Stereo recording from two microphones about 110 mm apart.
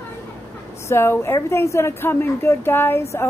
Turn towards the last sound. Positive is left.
turn(degrees=25)  # may be behind; listen again after turning